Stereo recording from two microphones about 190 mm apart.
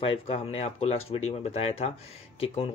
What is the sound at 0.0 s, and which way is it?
Speech, 30° left (ahead or behind).